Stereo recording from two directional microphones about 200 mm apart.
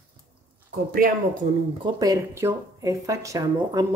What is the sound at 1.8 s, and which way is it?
Speech, 15° right (ahead or behind).